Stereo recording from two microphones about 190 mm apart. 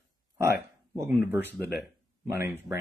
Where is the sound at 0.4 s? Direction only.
15° right (ahead or behind).